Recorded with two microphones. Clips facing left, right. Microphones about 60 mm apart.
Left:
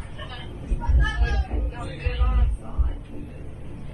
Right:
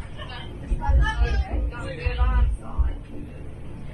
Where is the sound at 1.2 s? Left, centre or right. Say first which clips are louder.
Even; right.